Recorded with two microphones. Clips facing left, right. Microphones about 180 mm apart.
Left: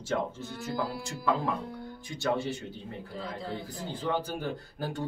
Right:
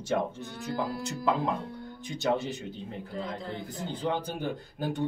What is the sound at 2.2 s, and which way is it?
Speech, 20° right (ahead or behind).